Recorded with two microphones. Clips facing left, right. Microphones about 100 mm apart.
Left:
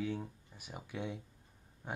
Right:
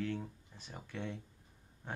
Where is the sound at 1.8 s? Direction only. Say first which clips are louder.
Left 2 dB; 10° left (ahead or behind).